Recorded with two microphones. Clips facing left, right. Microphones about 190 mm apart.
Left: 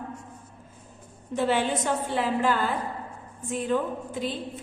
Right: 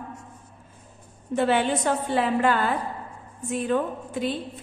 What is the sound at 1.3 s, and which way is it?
A woman's voice, 65° right (ahead or behind).